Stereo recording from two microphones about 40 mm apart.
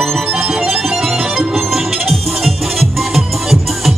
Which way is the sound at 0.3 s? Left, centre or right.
Right.